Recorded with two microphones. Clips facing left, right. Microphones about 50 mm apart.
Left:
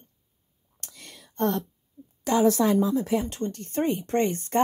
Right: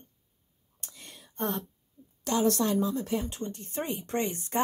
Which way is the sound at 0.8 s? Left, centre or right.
Left.